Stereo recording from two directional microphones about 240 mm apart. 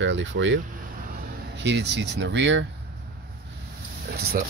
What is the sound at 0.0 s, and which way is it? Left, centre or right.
Speech, right.